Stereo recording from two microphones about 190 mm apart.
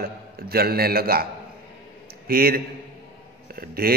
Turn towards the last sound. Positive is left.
turn(degrees=-55)  # may be behind; listen again after turning